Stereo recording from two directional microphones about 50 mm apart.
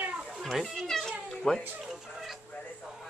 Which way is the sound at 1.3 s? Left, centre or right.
Centre.